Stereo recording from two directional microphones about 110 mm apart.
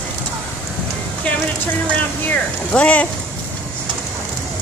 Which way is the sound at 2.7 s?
10° left (ahead or behind).